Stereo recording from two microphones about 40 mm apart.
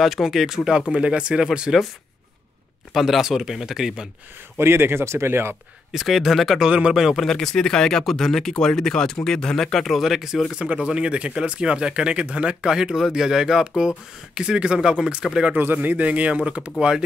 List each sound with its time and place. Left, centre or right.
0.0 s speech: centre
0.9 s speech: right
2.9 s speech: centre
4.6 s speech: right
5.9 s speech: centre
7.2 s speech: centre
8.0 s speech: centre
10.0 s speech: centre
11.0 s speech: right
12.6 s speech: centre
15.5 s speech: right